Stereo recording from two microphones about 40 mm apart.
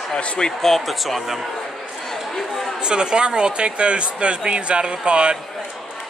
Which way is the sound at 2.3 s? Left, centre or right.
Centre.